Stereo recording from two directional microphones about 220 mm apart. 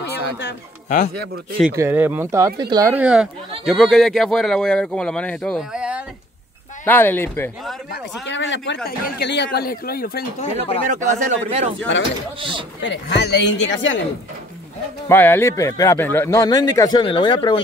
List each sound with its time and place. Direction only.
0.1 s a sound: 50° left (ahead or behind)
0.8 s a man's voice: 35° left (ahead or behind)
1.6 s speech: 10° right (ahead or behind)
6.8 s speech: 10° left (ahead or behind)
7.9 s speech: 55° left (ahead or behind)
10.9 s speech: 35° right (ahead or behind)
12.8 s speech: 55° left (ahead or behind)
15.0 s speech: 10° left (ahead or behind)